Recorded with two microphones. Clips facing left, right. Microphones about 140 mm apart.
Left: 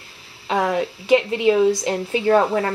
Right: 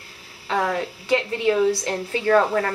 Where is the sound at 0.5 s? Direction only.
20° left (ahead or behind).